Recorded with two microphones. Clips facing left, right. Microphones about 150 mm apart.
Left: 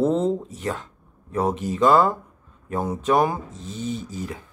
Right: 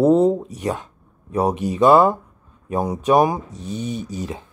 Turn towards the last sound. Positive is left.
turn(degrees=-20)  # may be behind; listen again after turning